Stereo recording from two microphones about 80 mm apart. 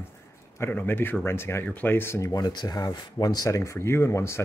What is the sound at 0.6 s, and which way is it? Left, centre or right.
Speech, left.